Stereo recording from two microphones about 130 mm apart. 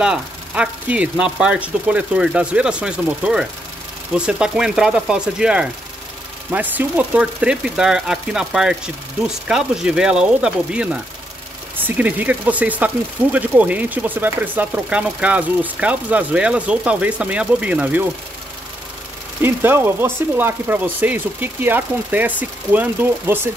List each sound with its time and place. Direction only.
0.0 s speech: 10° right (ahead or behind)
19.4 s speech: 15° right (ahead or behind)